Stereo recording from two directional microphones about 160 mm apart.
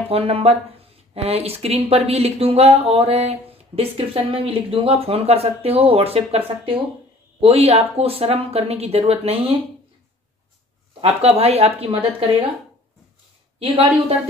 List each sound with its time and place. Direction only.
0.1 s speech: 35° right (ahead or behind)
11.0 s speech: 40° right (ahead or behind)
13.6 s speech: 35° right (ahead or behind)